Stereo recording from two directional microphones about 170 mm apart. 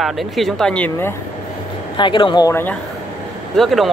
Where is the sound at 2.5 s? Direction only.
10° left (ahead or behind).